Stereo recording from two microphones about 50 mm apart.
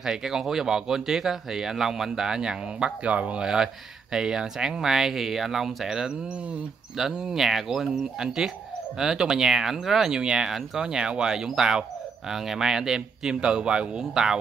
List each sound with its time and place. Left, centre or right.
0.0 s speech: centre; by 3.4 s right
3.4 s speech: centre
6.2 s speech: right
7.0 s speech: centre